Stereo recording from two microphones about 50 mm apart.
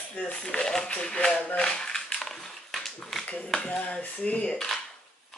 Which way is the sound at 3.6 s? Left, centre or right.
Left.